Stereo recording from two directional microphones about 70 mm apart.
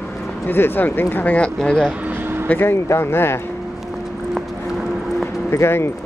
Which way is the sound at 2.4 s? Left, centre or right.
Left.